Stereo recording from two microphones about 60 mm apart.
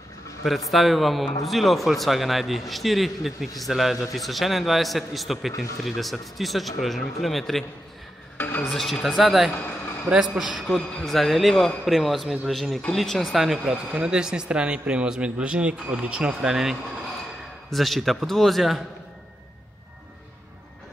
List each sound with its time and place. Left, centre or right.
0.4 s a man's voice: centre
8.6 s a man's voice: centre
10.7 s a man's voice: centre; by 16.5 s right
17.6 s a man's voice: centre